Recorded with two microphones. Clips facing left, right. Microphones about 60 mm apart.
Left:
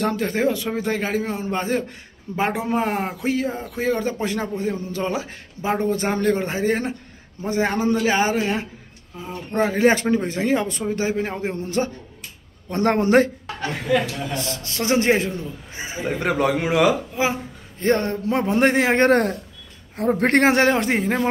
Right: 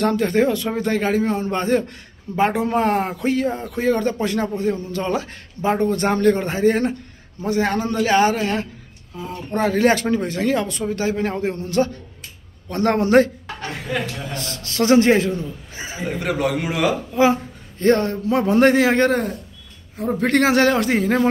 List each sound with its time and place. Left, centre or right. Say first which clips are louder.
0.0 s a man's voice: right 3 dB; centre
11.5 s a man's voice: right 3 dB; left
17.1 s a man's voice: right 6 dB; centre
19.0 s speech: left 3 dB; left
20.0 s a man's voice: left 1 dB; left
20.4 s a man's voice: right 1 dB; left